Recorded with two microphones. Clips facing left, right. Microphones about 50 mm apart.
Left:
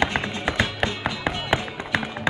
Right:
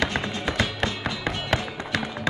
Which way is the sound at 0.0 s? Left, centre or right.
Centre.